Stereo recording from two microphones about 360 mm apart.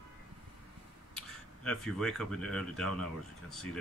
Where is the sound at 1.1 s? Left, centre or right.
Centre.